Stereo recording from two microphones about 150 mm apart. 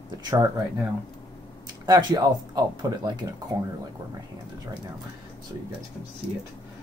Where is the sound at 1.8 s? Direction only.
25° right (ahead or behind).